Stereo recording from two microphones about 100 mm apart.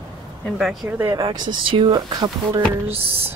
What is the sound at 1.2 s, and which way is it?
Speech, 50° right (ahead or behind).